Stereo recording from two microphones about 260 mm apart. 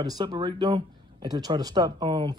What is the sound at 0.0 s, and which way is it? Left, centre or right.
Speech, centre.